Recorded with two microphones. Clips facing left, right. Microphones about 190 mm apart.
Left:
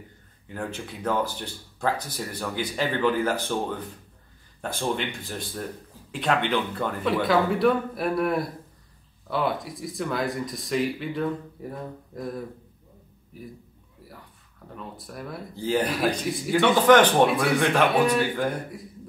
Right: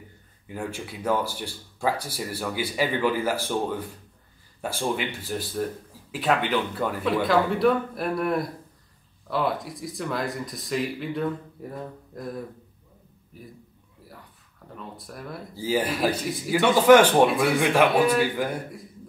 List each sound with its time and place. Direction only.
0.5 s speech: 10° right (ahead or behind)
14.8 s speech: centre (ahead or behind)